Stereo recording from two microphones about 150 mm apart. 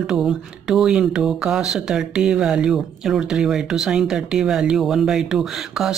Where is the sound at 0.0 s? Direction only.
5° right (ahead or behind).